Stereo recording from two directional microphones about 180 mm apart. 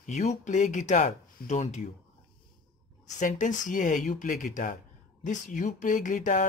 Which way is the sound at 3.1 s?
45° left (ahead or behind).